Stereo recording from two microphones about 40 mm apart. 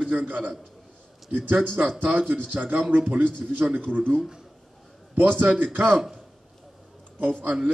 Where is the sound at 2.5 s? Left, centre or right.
Right.